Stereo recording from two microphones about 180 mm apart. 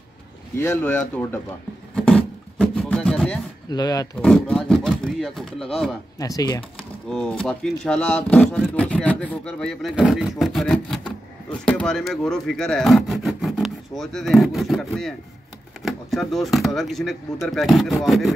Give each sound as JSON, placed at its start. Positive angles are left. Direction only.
{"t": 0.6, "sound": "speech", "side_deg": 10}
{"t": 2.0, "sound": "music", "side_deg": 5}
{"t": 3.7, "sound": "speech", "side_deg": 20}
{"t": 4.2, "sound": "speech", "side_deg": 5}
{"t": 6.1, "sound": "speech", "side_deg": 20}
{"t": 7.1, "sound": "speech", "side_deg": 0}